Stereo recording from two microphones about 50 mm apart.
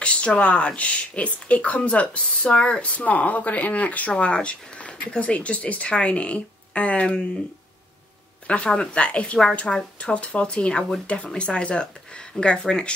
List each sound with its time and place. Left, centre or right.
0.0 s speech: left
8.5 s speech: left